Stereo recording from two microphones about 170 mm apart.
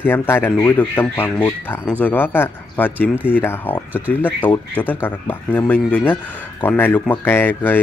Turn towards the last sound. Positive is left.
turn(degrees=10)  # may be behind; listen again after turning